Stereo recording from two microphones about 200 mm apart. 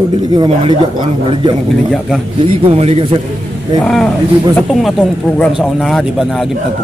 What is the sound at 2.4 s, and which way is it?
Speech, 30° right (ahead or behind).